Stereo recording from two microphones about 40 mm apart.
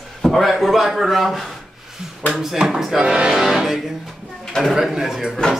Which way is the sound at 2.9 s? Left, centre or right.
Right.